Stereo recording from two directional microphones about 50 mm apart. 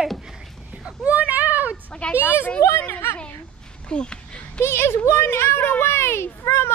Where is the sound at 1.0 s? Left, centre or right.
Right.